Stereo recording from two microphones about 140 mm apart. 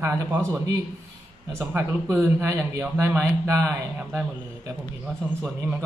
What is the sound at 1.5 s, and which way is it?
Speech, 15° right (ahead or behind).